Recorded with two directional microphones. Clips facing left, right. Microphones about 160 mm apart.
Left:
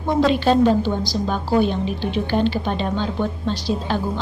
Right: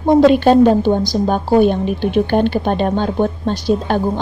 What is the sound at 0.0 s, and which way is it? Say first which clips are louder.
A woman's voice: right 8 dB; 50° right (ahead or behind).